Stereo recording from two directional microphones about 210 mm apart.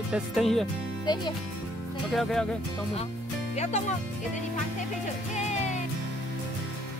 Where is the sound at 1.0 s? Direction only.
20° left (ahead or behind).